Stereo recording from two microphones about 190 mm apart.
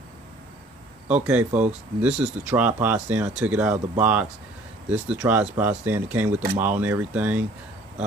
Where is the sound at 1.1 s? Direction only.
5° right (ahead or behind).